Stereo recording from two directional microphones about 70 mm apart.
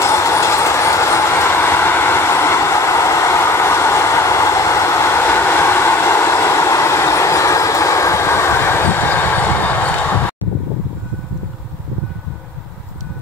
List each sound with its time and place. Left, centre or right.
0.0 s train: left